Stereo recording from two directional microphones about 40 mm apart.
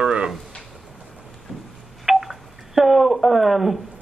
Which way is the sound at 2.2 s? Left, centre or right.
Centre.